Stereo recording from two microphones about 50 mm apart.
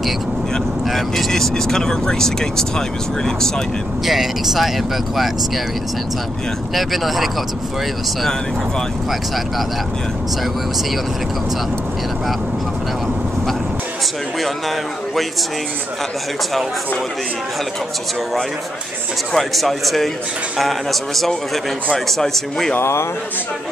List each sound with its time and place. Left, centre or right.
0.8 s speech: centre
4.0 s speech: centre
6.7 s speech: centre
8.2 s speech: centre
19.3 s speech: centre
22.8 s a man's voice: left